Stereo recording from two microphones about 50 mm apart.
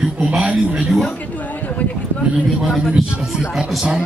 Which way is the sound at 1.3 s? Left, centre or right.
Left.